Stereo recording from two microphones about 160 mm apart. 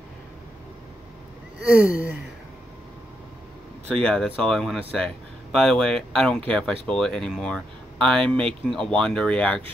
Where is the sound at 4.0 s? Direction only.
5° left (ahead or behind).